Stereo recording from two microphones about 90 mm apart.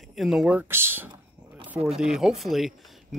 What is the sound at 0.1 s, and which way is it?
Speech, 5° right (ahead or behind).